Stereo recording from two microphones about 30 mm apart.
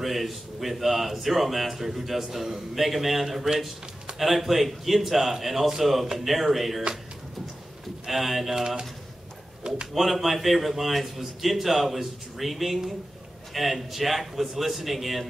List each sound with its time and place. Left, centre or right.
0.0 s a man's voice: centre
8.1 s speech: centre
8.5 s a man's voice: centre
9.9 s speech: centre